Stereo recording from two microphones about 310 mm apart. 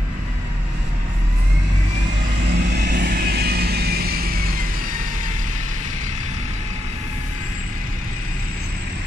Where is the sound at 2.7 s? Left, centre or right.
Right.